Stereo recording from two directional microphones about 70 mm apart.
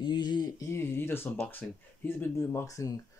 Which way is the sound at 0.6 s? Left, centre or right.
Left.